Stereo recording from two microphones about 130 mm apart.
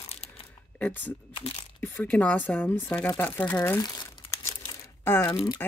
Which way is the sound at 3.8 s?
30° left (ahead or behind).